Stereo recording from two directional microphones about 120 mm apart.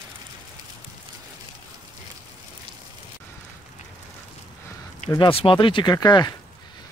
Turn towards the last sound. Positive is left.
turn(degrees=35)  # may be behind; listen again after turning